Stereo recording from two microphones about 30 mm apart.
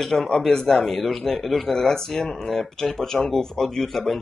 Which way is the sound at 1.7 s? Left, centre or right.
Centre.